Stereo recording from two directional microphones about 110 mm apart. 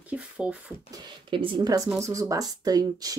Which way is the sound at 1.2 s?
50° right (ahead or behind).